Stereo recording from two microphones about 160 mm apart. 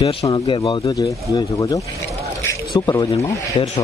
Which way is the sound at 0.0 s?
35° left (ahead or behind).